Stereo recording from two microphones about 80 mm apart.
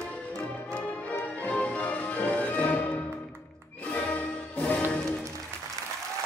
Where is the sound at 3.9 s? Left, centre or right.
Centre.